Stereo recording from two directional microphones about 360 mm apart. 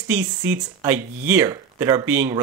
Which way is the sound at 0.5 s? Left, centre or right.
Centre.